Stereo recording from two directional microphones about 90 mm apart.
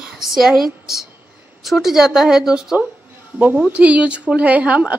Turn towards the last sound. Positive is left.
turn(degrees=-15)  # may be behind; listen again after turning